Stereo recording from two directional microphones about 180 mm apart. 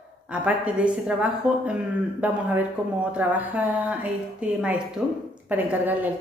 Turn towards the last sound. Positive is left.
turn(degrees=-10)  # may be behind; listen again after turning